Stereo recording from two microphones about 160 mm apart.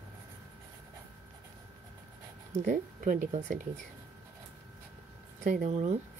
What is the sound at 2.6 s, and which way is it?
Speech, 55° right (ahead or behind).